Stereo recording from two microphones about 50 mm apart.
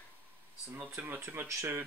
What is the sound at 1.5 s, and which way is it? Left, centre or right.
Speech, right.